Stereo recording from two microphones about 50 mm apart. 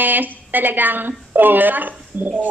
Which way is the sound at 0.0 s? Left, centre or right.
Right.